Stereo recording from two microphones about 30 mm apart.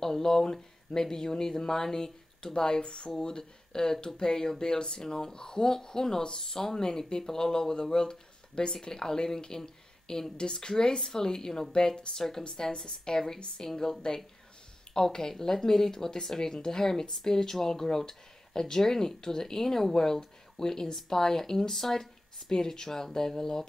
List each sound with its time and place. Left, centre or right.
0.0 s speech: centre; by 3.1 s left
3.2 s speech: left
15.1 s speech: centre